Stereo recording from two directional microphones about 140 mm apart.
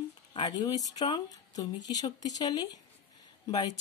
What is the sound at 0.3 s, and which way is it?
Speech, 30° left (ahead or behind).